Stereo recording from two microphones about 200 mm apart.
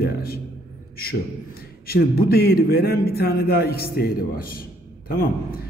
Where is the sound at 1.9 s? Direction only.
50° left (ahead or behind).